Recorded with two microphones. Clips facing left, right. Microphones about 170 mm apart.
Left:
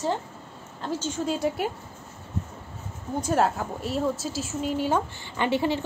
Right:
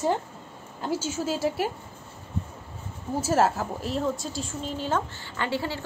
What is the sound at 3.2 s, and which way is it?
Speech, centre (ahead or behind).